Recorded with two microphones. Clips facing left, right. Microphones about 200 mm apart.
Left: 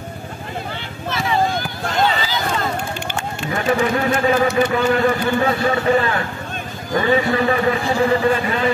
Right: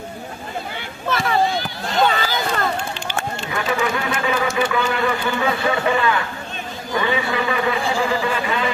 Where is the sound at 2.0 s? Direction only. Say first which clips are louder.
Even; 55° right (ahead or behind).